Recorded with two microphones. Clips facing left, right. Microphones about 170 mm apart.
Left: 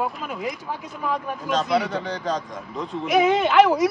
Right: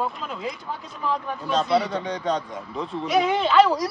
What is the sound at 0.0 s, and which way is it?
Speech, 10° left (ahead or behind).